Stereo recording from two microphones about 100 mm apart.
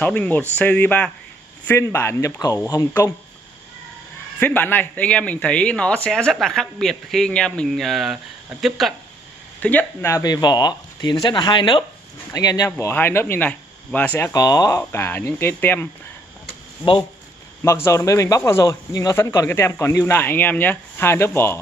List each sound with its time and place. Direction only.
0.0 s speech: 15° left (ahead or behind)
1.7 s speech: 25° left (ahead or behind)
4.4 s speech: 20° left (ahead or behind); by 8.9 s centre (ahead or behind)
9.6 s speech: 15° left (ahead or behind)
10.2 s speech: 45° left (ahead or behind)
12.3 s speech: 35° left (ahead or behind)
12.7 s speech: 20° left (ahead or behind)
14.3 s speech: 40° left (ahead or behind)
14.8 s speech: 25° left (ahead or behind)
17.8 s speech: 30° left (ahead or behind)